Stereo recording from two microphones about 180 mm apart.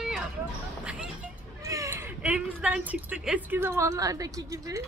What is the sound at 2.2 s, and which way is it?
A woman's voice, 5° right (ahead or behind).